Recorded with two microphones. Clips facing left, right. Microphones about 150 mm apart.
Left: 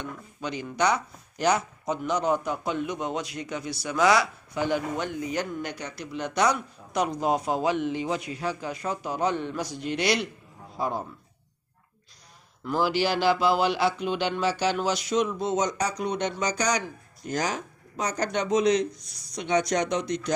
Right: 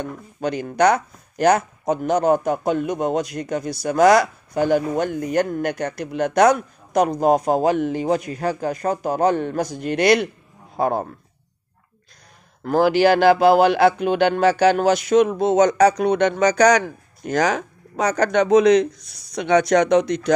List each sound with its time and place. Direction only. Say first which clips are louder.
0.0 s speech: right 9 dB; 50° right (ahead or behind)
12.6 s speech: right 9 dB; 55° right (ahead or behind); by 20.3 s 70° right (ahead or behind)